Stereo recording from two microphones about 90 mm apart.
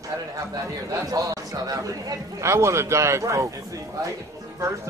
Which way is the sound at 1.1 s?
40° right (ahead or behind).